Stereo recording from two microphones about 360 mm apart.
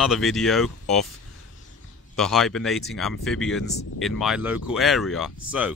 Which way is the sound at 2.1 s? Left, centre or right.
Centre.